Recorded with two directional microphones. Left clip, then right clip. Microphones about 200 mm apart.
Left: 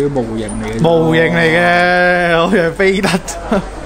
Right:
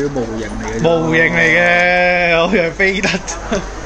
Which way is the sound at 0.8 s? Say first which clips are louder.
Left 2 dB; 25° left (ahead or behind).